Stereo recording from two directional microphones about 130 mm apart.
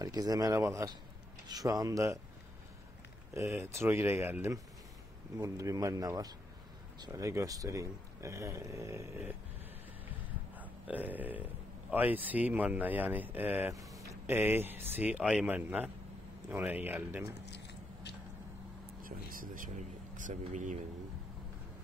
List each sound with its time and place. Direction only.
0.0 s speech: 30° right (ahead or behind)
3.3 s speech: 20° right (ahead or behind)
10.6 s a man's voice: 15° right (ahead or behind)
18.9 s speech: 90° right; by 20.8 s 75° right (ahead or behind)